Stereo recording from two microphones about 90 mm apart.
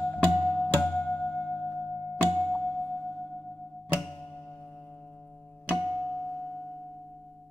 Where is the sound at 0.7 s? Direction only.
15° left (ahead or behind).